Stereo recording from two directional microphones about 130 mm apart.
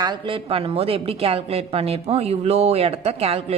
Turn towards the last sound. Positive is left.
turn(degrees=-50)  # may be behind; listen again after turning